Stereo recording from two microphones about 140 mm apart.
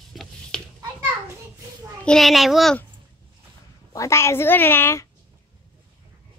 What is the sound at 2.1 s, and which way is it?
Speech, centre (ahead or behind).